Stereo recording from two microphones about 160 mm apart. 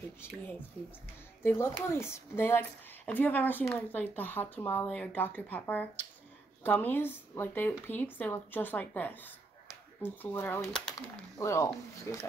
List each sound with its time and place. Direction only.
0.2 s speech: 15° left (ahead or behind)
1.4 s speech: 15° left (ahead or behind)
11.3 s speech: 20° left (ahead or behind)